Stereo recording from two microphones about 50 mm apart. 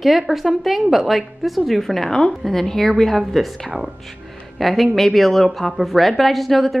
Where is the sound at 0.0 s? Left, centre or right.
Centre.